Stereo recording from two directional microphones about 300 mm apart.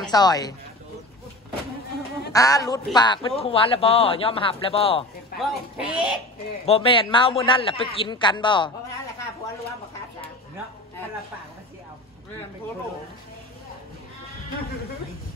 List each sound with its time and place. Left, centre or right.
0.1 s a man's voice: centre
2.3 s a man's voice: centre
5.4 s a sound: centre
6.6 s a man's voice: centre